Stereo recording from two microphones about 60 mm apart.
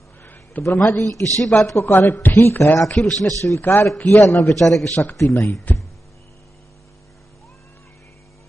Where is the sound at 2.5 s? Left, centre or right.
Left.